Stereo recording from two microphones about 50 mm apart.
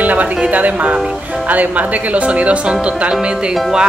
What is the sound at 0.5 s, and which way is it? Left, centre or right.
A woman's voice, right.